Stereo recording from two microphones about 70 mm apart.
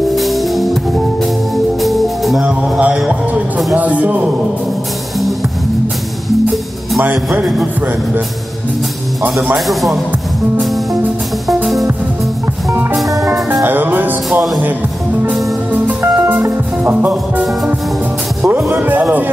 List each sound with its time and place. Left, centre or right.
0.1 s music: centre
1.8 s music: centre
3.7 s music: right
9.2 s speech: centre
10.6 s music: centre
12.9 s music: centre
13.7 s music: right
16.0 s music: right
18.8 s music: right